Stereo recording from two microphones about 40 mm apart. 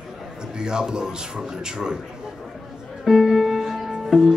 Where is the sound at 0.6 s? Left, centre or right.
Centre.